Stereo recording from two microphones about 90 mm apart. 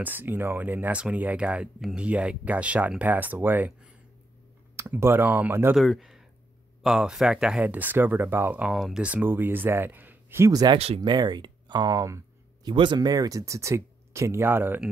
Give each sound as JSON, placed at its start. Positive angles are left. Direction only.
{"t": 0.0, "sound": "speech", "side_deg": -20}
{"t": 5.8, "sound": "speech", "side_deg": 0}
{"t": 7.6, "sound": "speech", "side_deg": -20}
{"t": 8.6, "sound": "speech", "side_deg": -5}
{"t": 9.0, "sound": "speech", "side_deg": -20}
{"t": 10.5, "sound": "speech", "side_deg": -45}
{"t": 12.6, "sound": "speech", "side_deg": -60}